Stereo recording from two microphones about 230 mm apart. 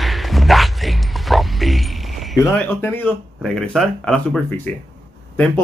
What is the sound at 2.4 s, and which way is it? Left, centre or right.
A man's voice, centre.